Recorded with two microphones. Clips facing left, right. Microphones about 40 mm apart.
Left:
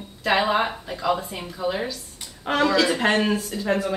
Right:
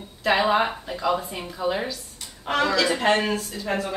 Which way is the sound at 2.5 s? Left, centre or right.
Centre.